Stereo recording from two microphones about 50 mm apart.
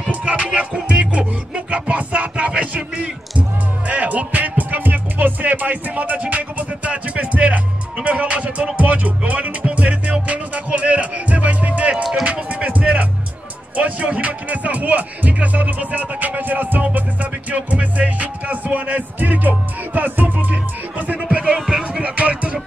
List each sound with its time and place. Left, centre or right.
0.1 s music: right
21.5 s music: centre
22.0 s music: right